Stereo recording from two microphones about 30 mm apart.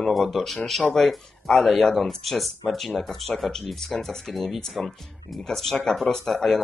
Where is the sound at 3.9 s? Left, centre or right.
Centre.